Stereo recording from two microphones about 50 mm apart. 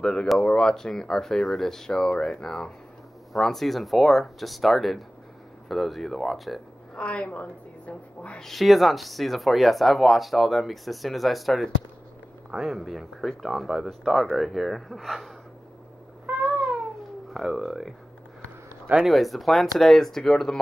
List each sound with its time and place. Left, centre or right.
0.0 s speech: centre
7.0 s a woman's voice: left
8.4 s speech: centre
17.3 s speech: centre
19.0 s speech: centre